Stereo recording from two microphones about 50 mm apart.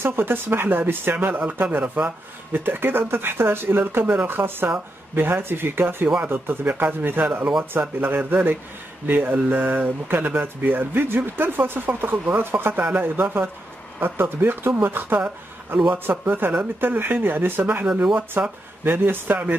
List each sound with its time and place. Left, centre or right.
0.0 s speech: right
1.8 s speech: right
2.5 s speech: right